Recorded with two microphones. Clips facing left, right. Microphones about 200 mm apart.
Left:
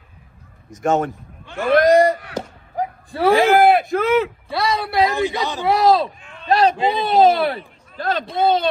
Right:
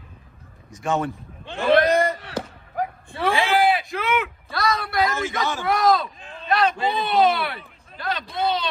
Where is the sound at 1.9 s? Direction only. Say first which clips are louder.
Left 7 dB; 40° left (ahead or behind).